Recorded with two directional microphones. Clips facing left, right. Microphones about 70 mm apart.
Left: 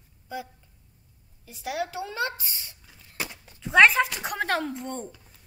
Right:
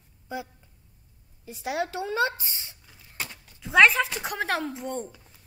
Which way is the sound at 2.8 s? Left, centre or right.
Centre.